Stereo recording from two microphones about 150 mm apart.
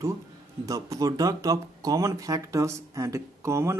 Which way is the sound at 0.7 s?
25° right (ahead or behind).